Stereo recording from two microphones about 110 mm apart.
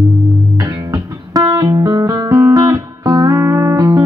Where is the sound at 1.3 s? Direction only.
30° right (ahead or behind).